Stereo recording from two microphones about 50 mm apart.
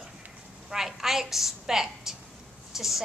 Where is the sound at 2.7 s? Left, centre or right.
Centre.